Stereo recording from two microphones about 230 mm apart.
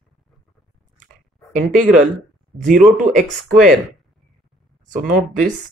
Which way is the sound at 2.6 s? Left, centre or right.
Right.